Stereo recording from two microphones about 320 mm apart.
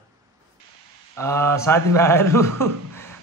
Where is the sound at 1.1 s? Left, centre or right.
Centre.